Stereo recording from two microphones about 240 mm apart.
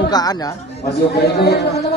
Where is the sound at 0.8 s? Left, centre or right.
Left.